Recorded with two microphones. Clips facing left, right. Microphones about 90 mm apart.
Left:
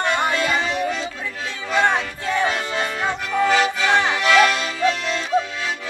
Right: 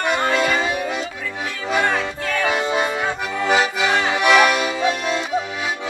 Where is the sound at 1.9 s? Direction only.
20° left (ahead or behind).